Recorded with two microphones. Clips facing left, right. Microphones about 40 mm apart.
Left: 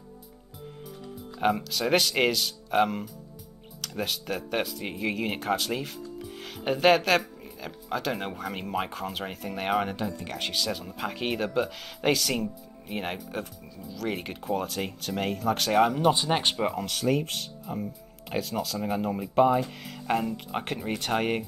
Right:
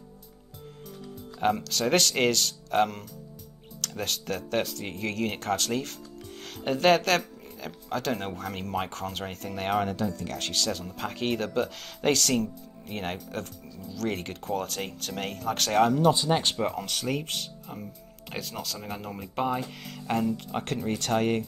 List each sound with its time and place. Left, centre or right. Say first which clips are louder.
1.4 s speech: even; centre
16.0 s speech: right 1 dB; centre
16.5 s speech: left 1 dB; centre